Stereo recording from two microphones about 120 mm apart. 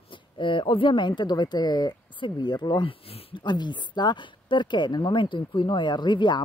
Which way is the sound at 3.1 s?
50° left (ahead or behind).